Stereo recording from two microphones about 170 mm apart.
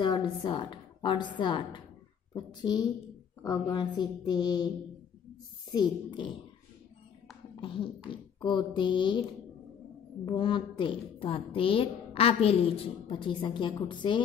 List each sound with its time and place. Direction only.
0.0 s a woman's voice: 25° left (ahead or behind)
5.7 s a woman's voice: 25° left (ahead or behind)
7.6 s a woman's voice: 30° left (ahead or behind)
10.2 s a woman's voice: 30° left (ahead or behind)